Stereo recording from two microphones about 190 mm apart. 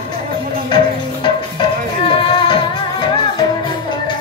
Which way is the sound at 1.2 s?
25° left (ahead or behind).